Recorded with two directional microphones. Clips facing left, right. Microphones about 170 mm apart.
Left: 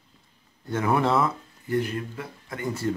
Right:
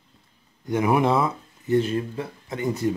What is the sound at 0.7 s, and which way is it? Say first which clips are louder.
Speech: right 3 dB; 15° right (ahead or behind).